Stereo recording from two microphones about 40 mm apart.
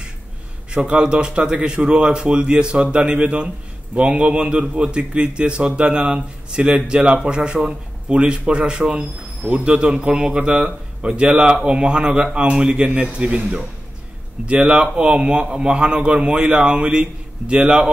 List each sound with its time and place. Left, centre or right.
0.7 s a man's voice: right